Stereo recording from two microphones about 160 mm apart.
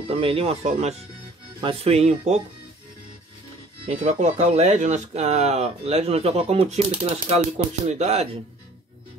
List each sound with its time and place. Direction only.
0.1 s speech: 35° right (ahead or behind)
4.0 s speech: 45° right (ahead or behind)